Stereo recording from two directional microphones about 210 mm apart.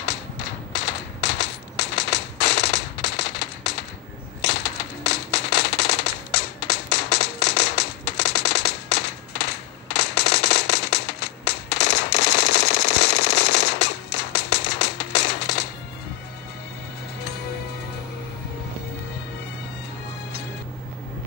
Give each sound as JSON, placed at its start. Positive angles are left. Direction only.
{"t": 0.7, "sound": "machine gun", "side_deg": 55}
{"t": 4.4, "sound": "a sound", "side_deg": 55}
{"t": 6.9, "sound": "music", "side_deg": 55}